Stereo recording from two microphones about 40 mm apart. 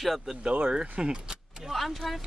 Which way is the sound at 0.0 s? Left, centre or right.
Centre.